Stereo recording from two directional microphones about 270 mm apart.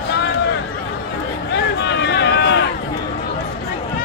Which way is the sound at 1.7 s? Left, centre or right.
Left.